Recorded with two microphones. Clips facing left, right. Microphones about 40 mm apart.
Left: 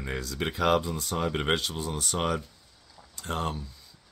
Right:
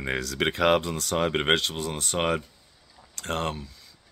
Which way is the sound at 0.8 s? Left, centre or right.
Right.